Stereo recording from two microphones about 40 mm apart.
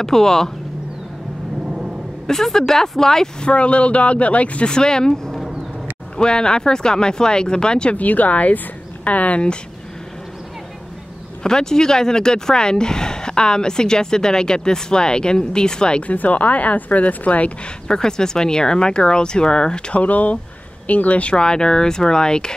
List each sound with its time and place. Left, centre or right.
0.0 s speech: centre
2.2 s speech: centre
3.4 s speech: left
4.6 s speech: centre
8.0 s speech: left
11.4 s speech: centre
16.0 s speech: left
17.8 s speech: centre
20.0 s speech: left; by 22.5 s centre